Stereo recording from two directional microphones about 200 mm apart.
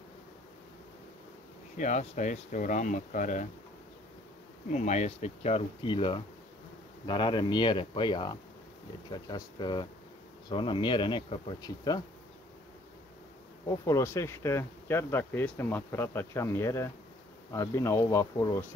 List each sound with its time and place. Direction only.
1.8 s speech: 35° left (ahead or behind)
4.6 s speech: 35° left (ahead or behind); by 12.0 s 20° left (ahead or behind)
13.8 s speech: 15° left (ahead or behind)